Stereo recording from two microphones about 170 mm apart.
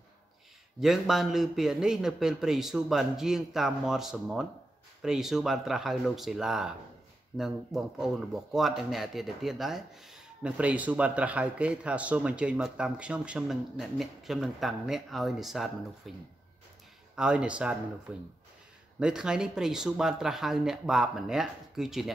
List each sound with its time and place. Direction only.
0.7 s speech: centre (ahead or behind)